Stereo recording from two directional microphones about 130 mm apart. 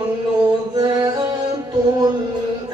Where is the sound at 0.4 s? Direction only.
35° right (ahead or behind).